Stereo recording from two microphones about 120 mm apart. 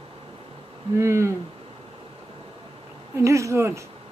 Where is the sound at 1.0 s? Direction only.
20° right (ahead or behind).